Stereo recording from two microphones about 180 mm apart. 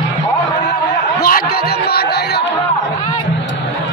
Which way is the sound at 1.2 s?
55° left (ahead or behind).